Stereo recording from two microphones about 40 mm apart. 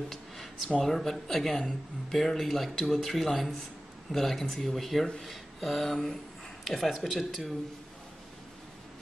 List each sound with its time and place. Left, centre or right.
0.7 s speech: centre